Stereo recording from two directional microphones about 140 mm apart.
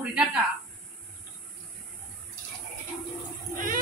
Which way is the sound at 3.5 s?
75° right (ahead or behind).